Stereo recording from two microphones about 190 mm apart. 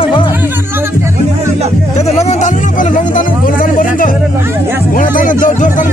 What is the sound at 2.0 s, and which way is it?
Music, 35° left (ahead or behind).